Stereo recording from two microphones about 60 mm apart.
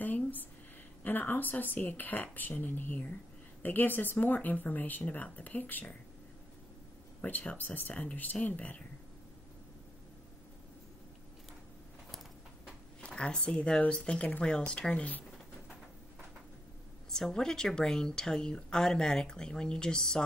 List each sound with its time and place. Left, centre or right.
0.0 s a sound: left
1.0 s speech: left
7.2 s speech: left
13.0 s a woman's voice: centre
17.1 s a woman's voice: centre